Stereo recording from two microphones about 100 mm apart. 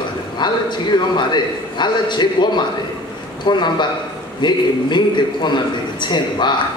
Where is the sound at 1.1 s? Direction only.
50° left (ahead or behind).